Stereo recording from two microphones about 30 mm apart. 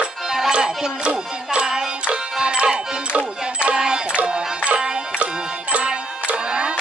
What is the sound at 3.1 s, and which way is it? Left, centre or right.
Music, right.